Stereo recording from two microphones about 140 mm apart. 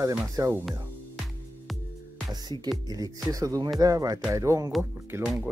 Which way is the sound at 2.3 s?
30° right (ahead or behind).